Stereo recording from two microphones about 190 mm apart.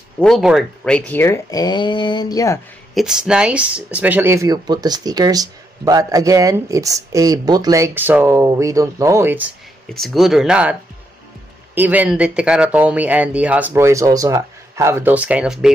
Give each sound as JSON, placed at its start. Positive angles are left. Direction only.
{"t": 0.2, "sound": "speech", "side_deg": 0}
{"t": 2.9, "sound": "speech", "side_deg": 0}
{"t": 9.9, "sound": "speech", "side_deg": 0}